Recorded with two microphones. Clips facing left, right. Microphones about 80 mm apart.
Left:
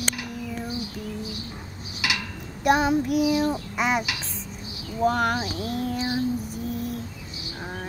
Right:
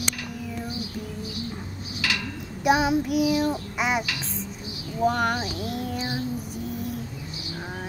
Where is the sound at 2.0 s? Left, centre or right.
Centre.